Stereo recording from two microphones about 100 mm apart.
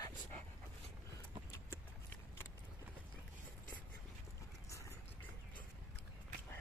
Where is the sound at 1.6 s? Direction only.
20° left (ahead or behind).